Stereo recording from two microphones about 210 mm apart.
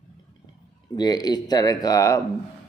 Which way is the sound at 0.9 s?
20° left (ahead or behind).